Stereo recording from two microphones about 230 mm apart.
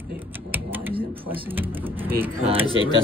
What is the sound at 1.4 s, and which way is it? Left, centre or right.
Speech, centre.